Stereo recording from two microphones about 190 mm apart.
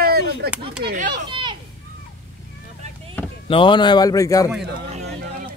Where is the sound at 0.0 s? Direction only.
55° right (ahead or behind).